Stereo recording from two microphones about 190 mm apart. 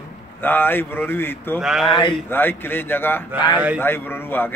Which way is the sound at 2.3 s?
10° left (ahead or behind).